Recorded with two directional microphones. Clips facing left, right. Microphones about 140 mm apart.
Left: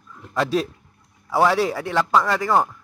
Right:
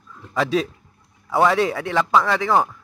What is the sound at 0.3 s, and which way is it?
A man's voice, centre (ahead or behind).